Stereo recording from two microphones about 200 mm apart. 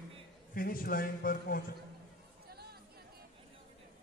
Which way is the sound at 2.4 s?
50° right (ahead or behind).